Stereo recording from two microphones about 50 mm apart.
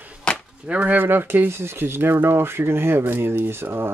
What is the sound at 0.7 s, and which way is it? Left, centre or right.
Speech, right.